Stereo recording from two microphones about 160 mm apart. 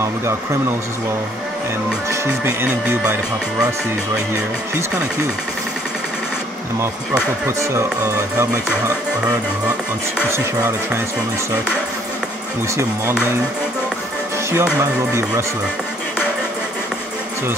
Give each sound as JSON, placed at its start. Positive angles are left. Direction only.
{"t": 2.0, "sound": "speech", "side_deg": -15}
{"t": 7.4, "sound": "speech", "side_deg": -15}
{"t": 12.7, "sound": "speech", "side_deg": -15}
{"t": 14.5, "sound": "speech", "side_deg": -15}